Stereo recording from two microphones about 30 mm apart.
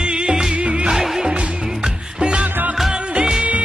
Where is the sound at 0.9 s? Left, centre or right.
Centre.